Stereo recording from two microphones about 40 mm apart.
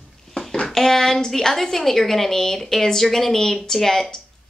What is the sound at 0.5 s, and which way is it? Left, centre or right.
A woman's voice, centre.